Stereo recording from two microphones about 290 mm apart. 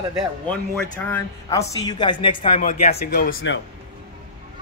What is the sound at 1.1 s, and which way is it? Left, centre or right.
Speech, centre.